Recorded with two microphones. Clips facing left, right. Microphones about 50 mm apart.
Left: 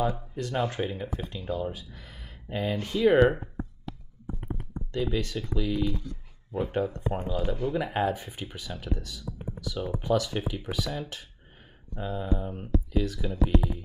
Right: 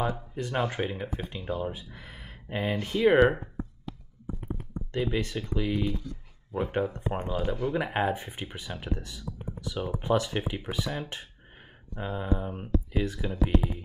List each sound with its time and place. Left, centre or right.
0.0 s speech: right
4.9 s speech: right
7.2 s speech: centre